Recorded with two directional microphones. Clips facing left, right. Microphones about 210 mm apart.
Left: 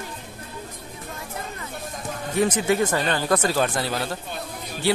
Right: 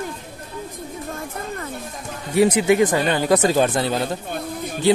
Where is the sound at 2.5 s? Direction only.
15° right (ahead or behind).